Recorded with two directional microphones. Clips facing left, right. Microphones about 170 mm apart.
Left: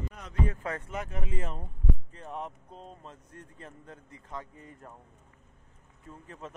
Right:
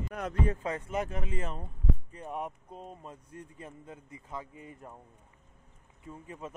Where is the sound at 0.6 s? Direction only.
15° right (ahead or behind).